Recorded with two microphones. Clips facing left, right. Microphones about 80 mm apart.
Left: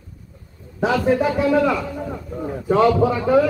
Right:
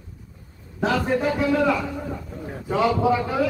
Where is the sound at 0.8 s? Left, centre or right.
Centre.